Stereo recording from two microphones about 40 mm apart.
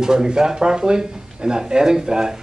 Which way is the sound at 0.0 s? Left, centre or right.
Centre.